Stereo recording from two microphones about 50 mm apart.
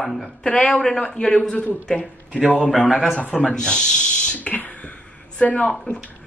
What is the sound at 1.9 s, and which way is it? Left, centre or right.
Speech, left.